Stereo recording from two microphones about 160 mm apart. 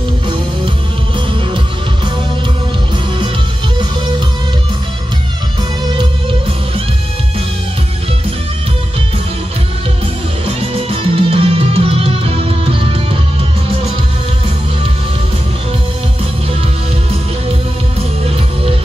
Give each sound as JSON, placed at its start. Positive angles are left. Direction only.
{"t": 10.4, "sound": "music", "side_deg": -35}